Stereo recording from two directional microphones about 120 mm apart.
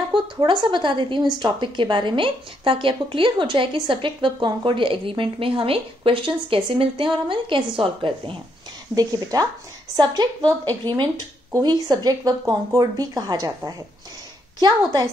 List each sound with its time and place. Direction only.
0.5 s a woman's voice: 40° right (ahead or behind)
8.9 s speech: 30° right (ahead or behind)